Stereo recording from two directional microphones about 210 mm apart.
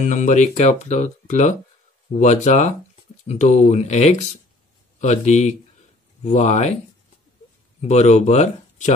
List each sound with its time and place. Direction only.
0.0 s speech: 35° left (ahead or behind)
7.9 s speech: 30° left (ahead or behind)